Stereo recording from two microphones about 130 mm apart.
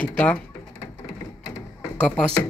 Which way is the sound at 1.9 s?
10° left (ahead or behind).